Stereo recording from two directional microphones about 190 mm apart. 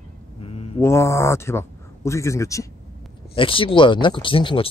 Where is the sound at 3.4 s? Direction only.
25° left (ahead or behind).